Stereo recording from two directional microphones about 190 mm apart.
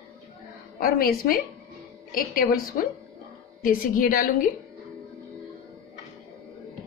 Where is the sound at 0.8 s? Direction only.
50° left (ahead or behind).